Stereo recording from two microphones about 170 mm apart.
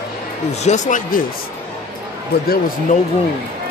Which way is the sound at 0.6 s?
45° left (ahead or behind).